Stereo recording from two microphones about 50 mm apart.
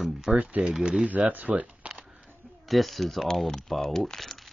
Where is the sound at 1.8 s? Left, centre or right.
Right.